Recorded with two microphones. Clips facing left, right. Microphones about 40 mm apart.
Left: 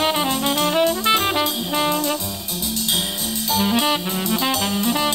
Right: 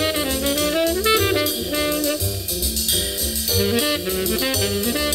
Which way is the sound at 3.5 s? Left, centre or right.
Centre.